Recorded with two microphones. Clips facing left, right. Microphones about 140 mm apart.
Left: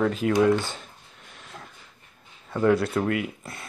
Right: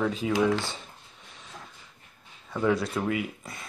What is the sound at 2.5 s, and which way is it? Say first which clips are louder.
Speech: left 4 dB; centre (ahead or behind).